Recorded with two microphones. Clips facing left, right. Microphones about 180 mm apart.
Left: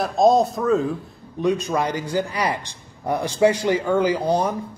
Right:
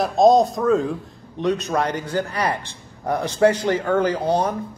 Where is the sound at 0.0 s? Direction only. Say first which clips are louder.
Right 2 dB; centre (ahead or behind).